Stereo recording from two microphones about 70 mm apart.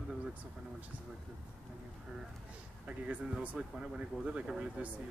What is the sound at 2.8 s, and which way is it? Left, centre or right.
Speech, right.